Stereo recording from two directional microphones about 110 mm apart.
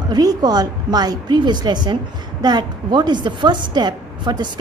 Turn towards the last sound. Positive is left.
turn(degrees=-40)  # may be behind; listen again after turning